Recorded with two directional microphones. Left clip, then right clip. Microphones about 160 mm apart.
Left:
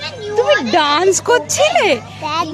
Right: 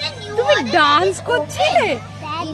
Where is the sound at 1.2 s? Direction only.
75° left (ahead or behind); by 2.5 s 90° left.